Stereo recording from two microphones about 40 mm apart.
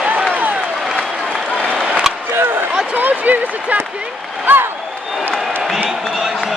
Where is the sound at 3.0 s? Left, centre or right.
Right.